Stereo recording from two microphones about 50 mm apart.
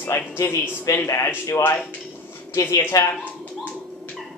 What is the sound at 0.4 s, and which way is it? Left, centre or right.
Speech, left.